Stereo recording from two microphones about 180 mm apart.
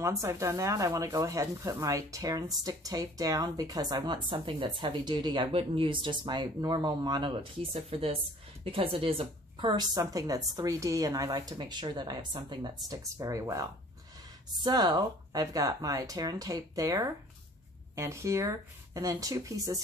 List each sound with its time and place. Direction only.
0.0 s a woman's voice: 15° right (ahead or behind)